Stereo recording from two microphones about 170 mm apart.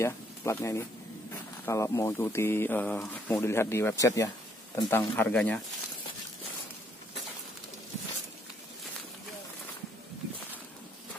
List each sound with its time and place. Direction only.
0.0 s speech: 15° left (ahead or behind)